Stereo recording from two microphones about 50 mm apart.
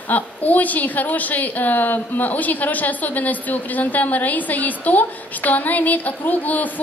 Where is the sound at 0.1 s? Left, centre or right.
Left.